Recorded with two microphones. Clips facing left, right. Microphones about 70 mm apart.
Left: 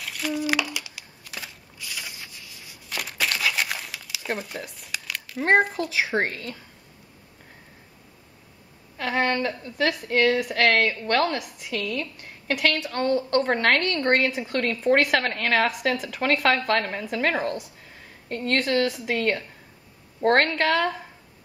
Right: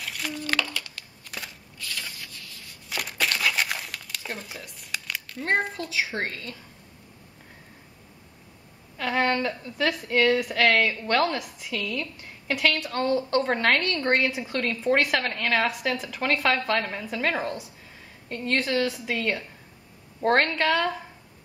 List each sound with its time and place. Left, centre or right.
0.0 s crumpling: centre
1.8 s a sound: centre
2.9 s crumpling: centre
5.5 s a woman's voice: centre
6.0 s a woman's voice: left
8.9 s a woman's voice: centre
14.5 s a woman's voice: centre